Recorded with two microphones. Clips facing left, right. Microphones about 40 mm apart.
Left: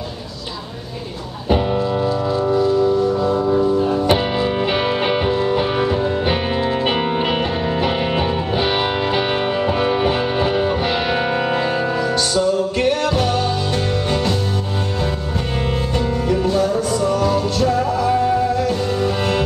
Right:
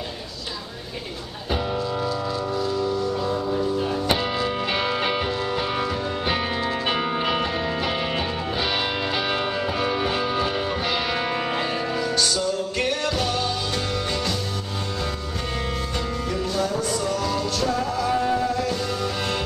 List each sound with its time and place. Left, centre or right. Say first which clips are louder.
1.5 s music: left 8 dB; left
3.3 s music: left 8 dB; left
4.1 s music: left 6 dB; left
16.3 s music: left 8 dB; left